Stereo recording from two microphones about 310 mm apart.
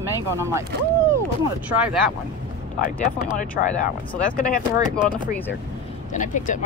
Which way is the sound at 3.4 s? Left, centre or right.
Left.